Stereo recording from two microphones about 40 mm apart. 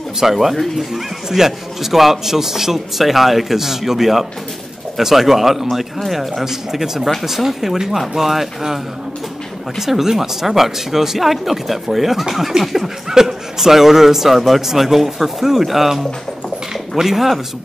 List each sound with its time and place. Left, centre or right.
0.2 s speech: centre
9.8 s speech: centre